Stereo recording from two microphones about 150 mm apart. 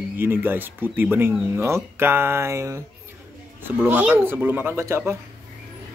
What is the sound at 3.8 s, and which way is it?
Speech, 15° right (ahead or behind).